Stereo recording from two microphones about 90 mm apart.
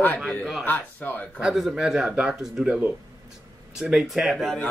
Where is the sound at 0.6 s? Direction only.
20° left (ahead or behind).